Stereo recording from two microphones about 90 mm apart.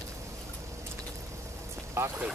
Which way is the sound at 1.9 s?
30° right (ahead or behind).